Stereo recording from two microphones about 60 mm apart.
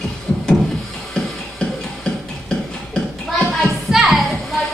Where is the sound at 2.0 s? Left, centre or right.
Centre.